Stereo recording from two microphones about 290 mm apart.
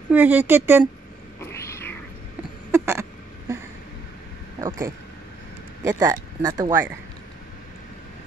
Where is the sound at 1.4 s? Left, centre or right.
Centre.